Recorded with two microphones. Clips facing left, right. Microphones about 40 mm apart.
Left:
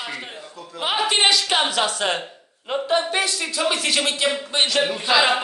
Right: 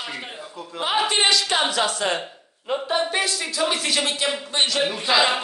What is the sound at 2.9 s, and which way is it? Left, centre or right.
A man's voice, centre.